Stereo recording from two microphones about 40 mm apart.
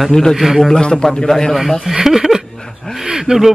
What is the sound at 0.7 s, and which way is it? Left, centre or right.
Speech, centre.